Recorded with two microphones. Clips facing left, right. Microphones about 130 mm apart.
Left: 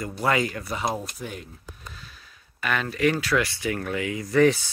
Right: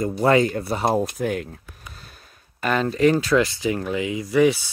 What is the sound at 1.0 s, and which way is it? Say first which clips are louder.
Speech: right 11 dB; 60° right (ahead or behind).